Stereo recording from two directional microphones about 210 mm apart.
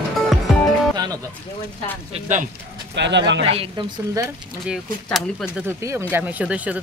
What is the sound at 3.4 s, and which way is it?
Speech, 25° right (ahead or behind).